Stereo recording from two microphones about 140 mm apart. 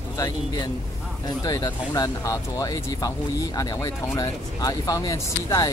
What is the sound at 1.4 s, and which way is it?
Speech, 25° left (ahead or behind).